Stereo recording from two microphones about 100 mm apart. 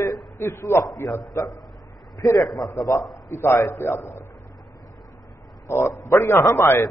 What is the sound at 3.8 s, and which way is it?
Speech, 25° left (ahead or behind).